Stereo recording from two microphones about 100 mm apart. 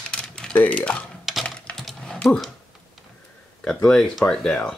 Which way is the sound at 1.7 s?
5° left (ahead or behind).